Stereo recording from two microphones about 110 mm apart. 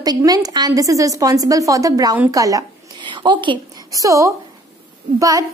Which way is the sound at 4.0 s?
30° right (ahead or behind).